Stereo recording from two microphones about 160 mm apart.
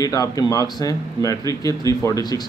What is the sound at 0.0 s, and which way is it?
Speech, 20° left (ahead or behind).